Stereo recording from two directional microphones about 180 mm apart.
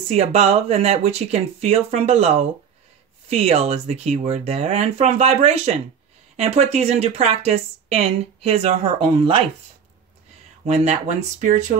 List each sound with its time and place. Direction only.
0.1 s speech: 35° right (ahead or behind)
10.6 s speech: 40° right (ahead or behind)